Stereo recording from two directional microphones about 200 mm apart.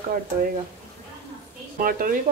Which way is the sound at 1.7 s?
45° right (ahead or behind).